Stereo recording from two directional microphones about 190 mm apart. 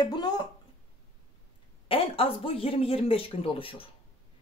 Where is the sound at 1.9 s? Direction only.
30° left (ahead or behind).